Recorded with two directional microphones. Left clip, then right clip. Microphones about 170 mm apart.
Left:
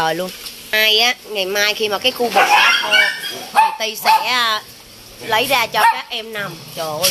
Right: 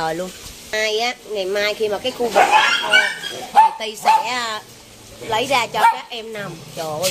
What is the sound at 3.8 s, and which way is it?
Speech, 10° left (ahead or behind).